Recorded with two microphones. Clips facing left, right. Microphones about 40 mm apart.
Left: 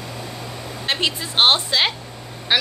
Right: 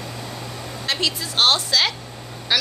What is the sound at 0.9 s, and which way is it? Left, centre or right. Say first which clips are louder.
A woman's voice: left 2 dB; left.